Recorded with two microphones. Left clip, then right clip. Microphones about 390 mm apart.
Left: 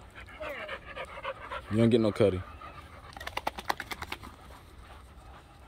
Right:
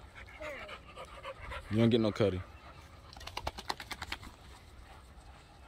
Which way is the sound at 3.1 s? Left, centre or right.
Centre.